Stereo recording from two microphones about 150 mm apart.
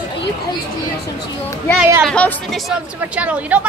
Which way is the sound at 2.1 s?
5° left (ahead or behind).